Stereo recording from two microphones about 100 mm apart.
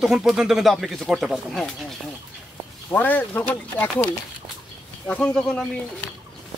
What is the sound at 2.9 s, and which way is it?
Speech, 15° left (ahead or behind).